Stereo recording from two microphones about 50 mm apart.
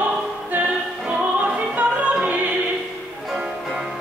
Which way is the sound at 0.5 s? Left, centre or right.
Right.